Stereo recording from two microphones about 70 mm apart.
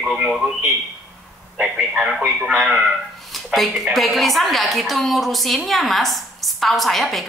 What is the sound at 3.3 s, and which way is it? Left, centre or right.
A woman's voice, centre.